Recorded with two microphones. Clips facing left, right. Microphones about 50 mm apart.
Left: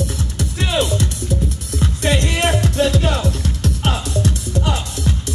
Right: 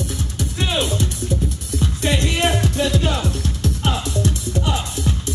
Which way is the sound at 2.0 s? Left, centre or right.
Left.